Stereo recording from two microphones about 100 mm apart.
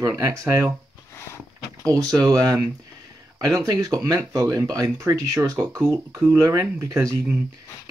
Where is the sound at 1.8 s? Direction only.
35° right (ahead or behind).